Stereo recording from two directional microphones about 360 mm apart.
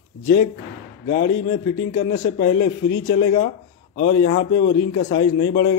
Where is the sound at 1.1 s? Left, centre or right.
Left.